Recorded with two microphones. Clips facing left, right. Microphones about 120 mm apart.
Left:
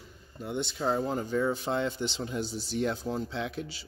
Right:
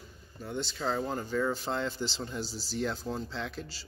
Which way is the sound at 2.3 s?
55° left (ahead or behind).